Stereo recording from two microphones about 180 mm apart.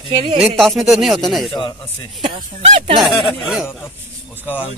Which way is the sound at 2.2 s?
30° right (ahead or behind).